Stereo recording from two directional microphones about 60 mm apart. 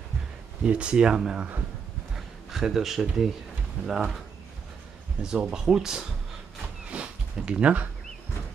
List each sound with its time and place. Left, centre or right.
0.7 s a man's voice: centre
5.2 s speech: centre
6.9 s a sound: centre